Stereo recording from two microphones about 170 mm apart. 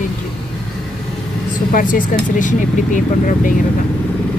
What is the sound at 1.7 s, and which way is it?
Speech, 55° left (ahead or behind).